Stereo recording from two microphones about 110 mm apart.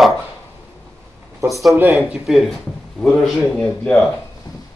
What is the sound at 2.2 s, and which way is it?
A man's voice, centre (ahead or behind).